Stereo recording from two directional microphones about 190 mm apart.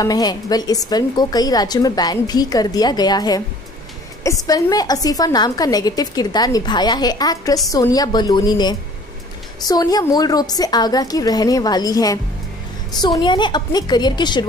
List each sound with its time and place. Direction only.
0.0 s a woman's voice: 20° left (ahead or behind)